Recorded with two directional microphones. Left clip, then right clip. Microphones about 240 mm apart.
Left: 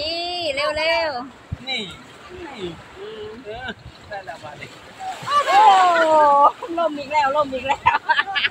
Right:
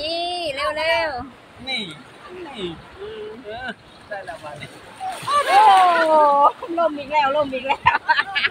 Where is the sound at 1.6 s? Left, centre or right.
Centre.